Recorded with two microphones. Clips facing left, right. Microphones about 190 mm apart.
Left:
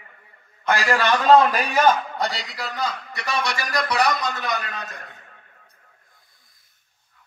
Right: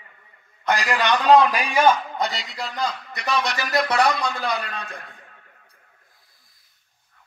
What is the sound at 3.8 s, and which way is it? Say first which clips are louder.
A man's voice: even; 30° right (ahead or behind).